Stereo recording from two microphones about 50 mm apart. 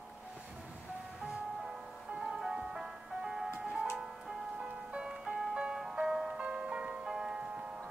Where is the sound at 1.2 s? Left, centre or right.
Centre.